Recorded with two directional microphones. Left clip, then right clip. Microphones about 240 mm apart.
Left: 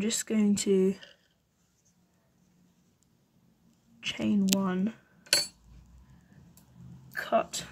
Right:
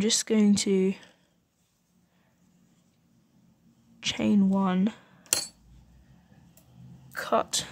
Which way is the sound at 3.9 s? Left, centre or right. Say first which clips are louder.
Right 4 dB; right.